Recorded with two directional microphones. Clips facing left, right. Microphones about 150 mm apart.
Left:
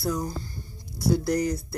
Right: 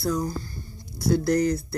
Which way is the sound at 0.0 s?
15° left (ahead or behind).